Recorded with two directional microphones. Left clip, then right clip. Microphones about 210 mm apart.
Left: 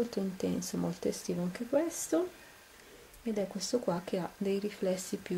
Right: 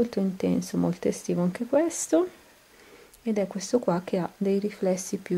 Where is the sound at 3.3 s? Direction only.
Centre (ahead or behind).